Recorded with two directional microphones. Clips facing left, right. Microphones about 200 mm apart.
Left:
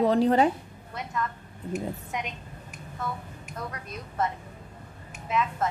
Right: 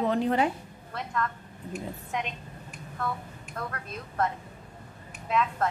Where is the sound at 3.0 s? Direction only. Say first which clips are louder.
Right 1 dB; centre (ahead or behind).